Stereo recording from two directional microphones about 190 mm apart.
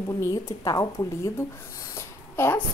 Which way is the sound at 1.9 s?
10° left (ahead or behind).